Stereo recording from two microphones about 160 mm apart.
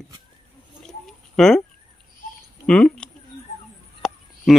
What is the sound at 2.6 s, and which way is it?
Speech, 5° left (ahead or behind).